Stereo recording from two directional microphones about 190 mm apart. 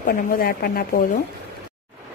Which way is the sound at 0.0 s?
50° left (ahead or behind).